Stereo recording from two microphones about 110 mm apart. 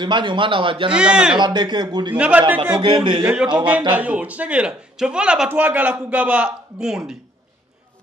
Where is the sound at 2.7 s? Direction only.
45° right (ahead or behind).